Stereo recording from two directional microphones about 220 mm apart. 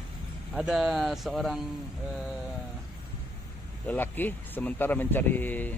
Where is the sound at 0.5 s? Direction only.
Centre (ahead or behind).